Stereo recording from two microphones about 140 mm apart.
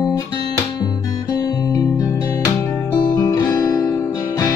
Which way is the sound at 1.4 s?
25° left (ahead or behind).